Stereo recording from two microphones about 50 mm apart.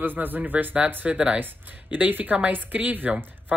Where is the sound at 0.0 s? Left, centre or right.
Right.